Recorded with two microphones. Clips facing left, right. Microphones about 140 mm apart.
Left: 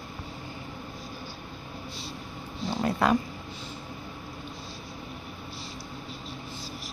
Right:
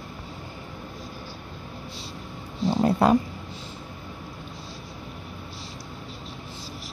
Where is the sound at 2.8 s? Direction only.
35° right (ahead or behind).